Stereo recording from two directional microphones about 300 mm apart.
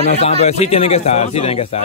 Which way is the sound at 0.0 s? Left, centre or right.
Left.